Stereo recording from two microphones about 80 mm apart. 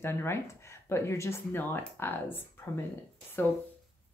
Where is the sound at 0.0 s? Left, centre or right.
Left.